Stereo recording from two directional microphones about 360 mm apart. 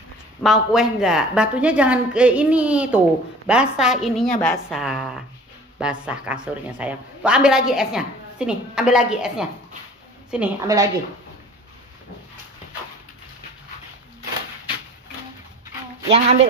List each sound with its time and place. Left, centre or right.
0.4 s a woman's voice: centre
16.0 s speech: centre